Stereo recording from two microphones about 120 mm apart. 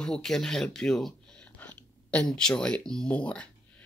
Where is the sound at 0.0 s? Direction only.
5° left (ahead or behind).